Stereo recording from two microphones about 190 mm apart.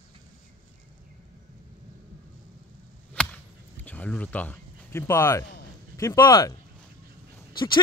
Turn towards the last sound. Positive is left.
turn(degrees=25)  # may be behind; listen again after turning